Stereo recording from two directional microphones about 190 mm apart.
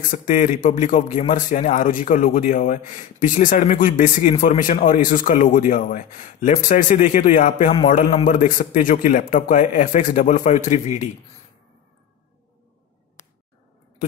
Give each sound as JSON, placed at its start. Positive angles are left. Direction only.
{"t": 0.1, "sound": "a man's voice", "side_deg": 45}